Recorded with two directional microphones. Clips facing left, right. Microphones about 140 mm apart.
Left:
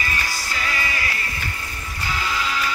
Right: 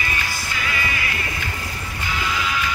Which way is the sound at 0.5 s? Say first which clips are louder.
Even; 40° left (ahead or behind).